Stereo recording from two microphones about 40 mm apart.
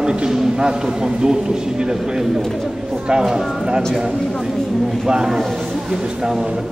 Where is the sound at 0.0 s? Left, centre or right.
Right.